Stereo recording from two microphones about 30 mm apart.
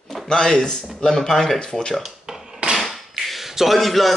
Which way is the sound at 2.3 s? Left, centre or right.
Right.